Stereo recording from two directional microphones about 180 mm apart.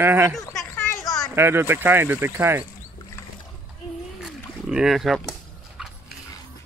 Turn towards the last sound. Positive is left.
turn(degrees=0)  # may be behind; listen again after turning